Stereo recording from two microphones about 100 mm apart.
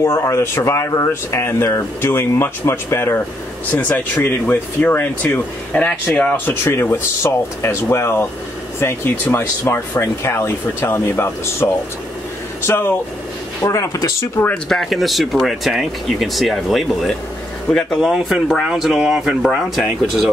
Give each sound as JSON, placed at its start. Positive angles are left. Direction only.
{"t": 0.0, "sound": "speech", "side_deg": 30}
{"t": 13.6, "sound": "speech", "side_deg": 35}
{"t": 14.5, "sound": "speech", "side_deg": 5}
{"t": 18.1, "sound": "speech", "side_deg": -5}